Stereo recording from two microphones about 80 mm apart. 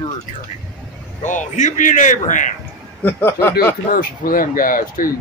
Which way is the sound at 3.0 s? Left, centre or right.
Left.